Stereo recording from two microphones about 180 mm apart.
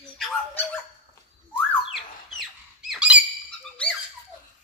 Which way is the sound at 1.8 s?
Centre (ahead or behind).